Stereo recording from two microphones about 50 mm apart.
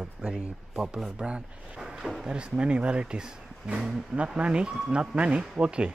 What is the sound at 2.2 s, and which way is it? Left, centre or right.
Speech, right.